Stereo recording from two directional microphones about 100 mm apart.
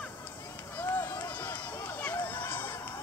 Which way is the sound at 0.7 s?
25° left (ahead or behind).